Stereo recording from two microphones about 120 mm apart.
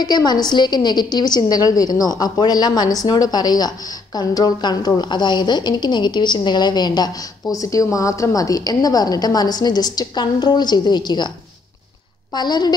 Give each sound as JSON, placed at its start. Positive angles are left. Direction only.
{"t": 0.0, "sound": "a woman's voice", "side_deg": 35}